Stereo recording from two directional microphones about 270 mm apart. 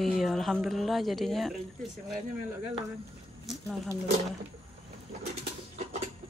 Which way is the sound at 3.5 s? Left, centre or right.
Centre.